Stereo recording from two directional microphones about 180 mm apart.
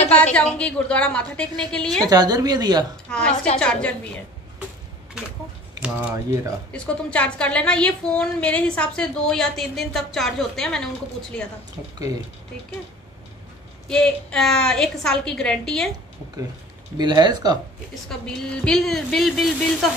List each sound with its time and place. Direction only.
0.2 s a woman's voice: 5° left (ahead or behind)
2.0 s a woman's voice: 20° right (ahead or behind)
3.1 s a woman's voice: 5° left (ahead or behind)
5.8 s speech: 5° right (ahead or behind)
6.7 s a woman's voice: 5° left (ahead or behind)
13.8 s a woman's voice: 5° left (ahead or behind)
16.9 s a woman's voice: 25° right (ahead or behind)
18.0 s a woman's voice: 5° left (ahead or behind)